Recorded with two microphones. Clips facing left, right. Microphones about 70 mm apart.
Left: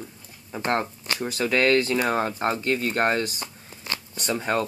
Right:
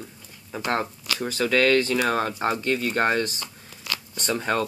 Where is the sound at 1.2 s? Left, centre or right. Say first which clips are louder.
Right 1 dB; centre.